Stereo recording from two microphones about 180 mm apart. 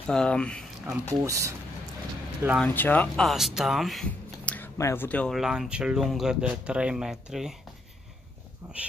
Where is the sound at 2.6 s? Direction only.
10° left (ahead or behind).